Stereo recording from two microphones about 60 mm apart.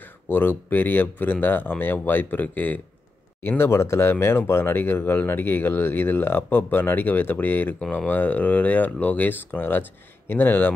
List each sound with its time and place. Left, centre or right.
0.3 s speech: left
3.4 s speech: left